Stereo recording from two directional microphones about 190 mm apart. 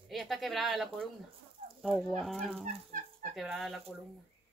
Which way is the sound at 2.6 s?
40° right (ahead or behind).